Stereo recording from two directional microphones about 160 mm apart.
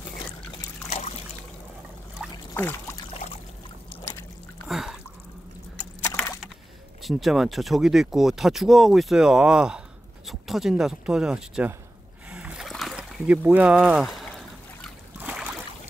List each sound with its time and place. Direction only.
2.5 s pour: 15° left (ahead or behind)
4.6 s a sound: centre (ahead or behind)
7.0 s speech: centre (ahead or behind)
12.3 s boat: 5° right (ahead or behind)
15.1 s boat: 10° right (ahead or behind)